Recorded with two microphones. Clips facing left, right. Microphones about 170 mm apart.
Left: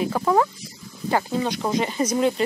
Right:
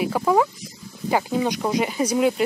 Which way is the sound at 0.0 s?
5° right (ahead or behind).